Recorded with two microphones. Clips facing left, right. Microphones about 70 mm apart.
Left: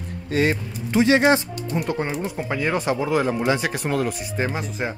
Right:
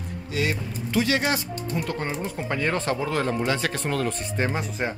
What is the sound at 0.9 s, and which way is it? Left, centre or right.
Speech, left.